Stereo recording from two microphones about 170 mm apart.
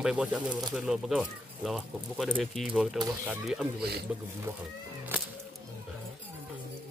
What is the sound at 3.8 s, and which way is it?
Speech, 70° right (ahead or behind).